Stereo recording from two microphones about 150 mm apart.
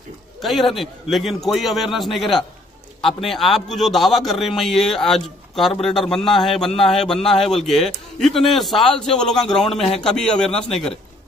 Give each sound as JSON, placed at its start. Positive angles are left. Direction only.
{"t": 0.4, "sound": "a man's voice", "side_deg": 0}